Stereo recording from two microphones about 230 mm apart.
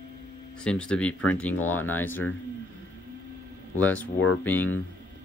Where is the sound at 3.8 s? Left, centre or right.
Centre.